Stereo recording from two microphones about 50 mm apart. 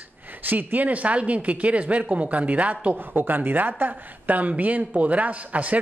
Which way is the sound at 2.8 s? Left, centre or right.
Right.